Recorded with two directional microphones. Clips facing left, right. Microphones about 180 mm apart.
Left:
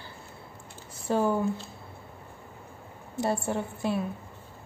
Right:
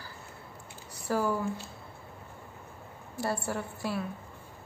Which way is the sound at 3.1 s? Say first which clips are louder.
Left 4 dB; 25° left (ahead or behind).